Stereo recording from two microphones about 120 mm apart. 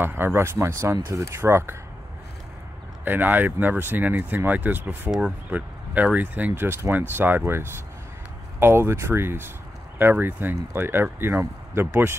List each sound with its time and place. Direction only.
0.0 s speech: 20° right (ahead or behind)
3.1 s speech: 15° right (ahead or behind)